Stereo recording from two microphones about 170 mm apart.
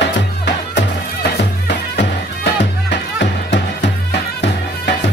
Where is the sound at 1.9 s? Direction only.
85° left.